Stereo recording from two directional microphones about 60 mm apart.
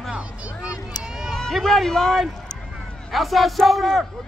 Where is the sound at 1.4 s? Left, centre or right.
Centre.